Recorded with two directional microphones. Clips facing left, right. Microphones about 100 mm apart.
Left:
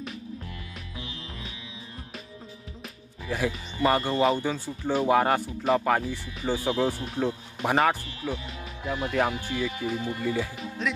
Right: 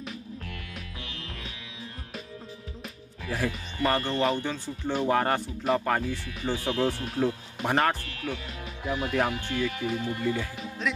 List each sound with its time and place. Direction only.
3.3 s speech: 5° left (ahead or behind)
8.0 s speech: 20° left (ahead or behind)
8.3 s speech: centre (ahead or behind)